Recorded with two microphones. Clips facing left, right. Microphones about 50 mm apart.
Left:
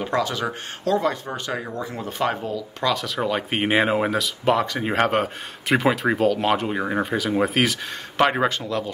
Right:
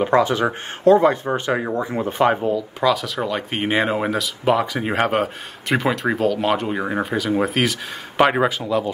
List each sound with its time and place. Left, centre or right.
0.0 s speech: right
2.8 s speech: centre